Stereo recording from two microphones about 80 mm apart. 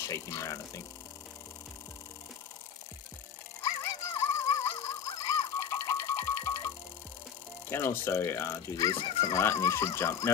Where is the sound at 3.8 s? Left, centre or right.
Left.